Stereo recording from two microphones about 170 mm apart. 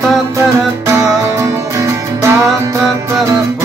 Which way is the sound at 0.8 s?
20° right (ahead or behind).